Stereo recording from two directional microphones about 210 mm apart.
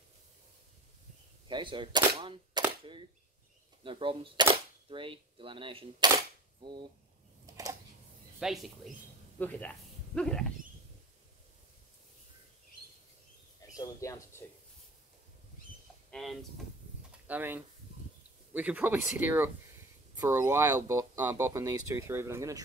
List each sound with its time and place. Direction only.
1.5 s speech: 25° right (ahead or behind)
7.4 s camera: 15° right (ahead or behind)
8.4 s speech: centre (ahead or behind)
13.7 s speech: 15° left (ahead or behind)
16.1 s speech: centre (ahead or behind)